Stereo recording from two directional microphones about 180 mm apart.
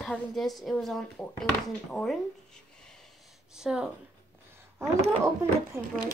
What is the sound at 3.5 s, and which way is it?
Speech, 5° right (ahead or behind).